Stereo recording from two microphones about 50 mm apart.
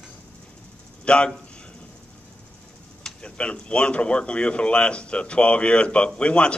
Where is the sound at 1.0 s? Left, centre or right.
Centre.